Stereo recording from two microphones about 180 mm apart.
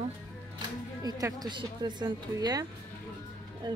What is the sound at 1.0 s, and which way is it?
Speech, 20° right (ahead or behind).